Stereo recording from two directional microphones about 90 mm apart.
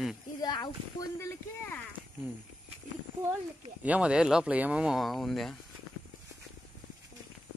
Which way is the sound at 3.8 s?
15° right (ahead or behind).